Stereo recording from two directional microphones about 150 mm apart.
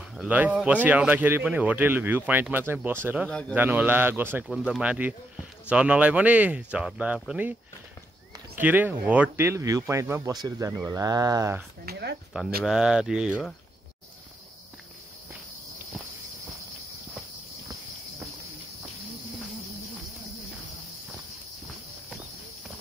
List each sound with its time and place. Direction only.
0.1 s speech: 5° right (ahead or behind)
3.3 s a man's voice: 5° left (ahead or behind)
3.5 s speech: 10° right (ahead or behind)
4.5 s speech: 5° right (ahead or behind)
8.5 s speech: 10° right (ahead or behind)
11.8 s speech: 90° right
12.6 s speech: 5° right (ahead or behind)